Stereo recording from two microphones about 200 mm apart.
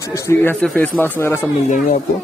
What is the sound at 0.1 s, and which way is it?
A man's voice, 10° left (ahead or behind).